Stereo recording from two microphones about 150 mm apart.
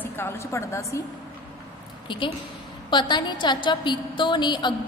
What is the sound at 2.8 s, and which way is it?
A woman's voice, 30° left (ahead or behind).